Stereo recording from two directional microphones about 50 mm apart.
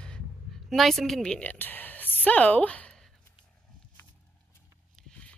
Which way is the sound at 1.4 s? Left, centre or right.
Left.